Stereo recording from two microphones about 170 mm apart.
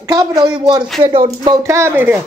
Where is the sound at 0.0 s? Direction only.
20° right (ahead or behind).